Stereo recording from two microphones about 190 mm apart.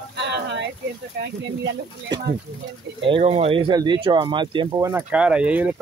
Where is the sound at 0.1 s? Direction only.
65° right (ahead or behind).